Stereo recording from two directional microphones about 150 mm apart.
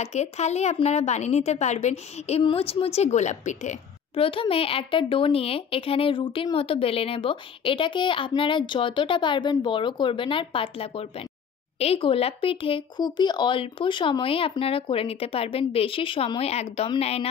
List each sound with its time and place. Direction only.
0.0 s a woman's voice: 50° left (ahead or behind)
4.1 s a woman's voice: 35° left (ahead or behind)